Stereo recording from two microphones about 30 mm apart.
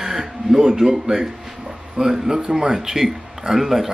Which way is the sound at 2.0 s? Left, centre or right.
Centre.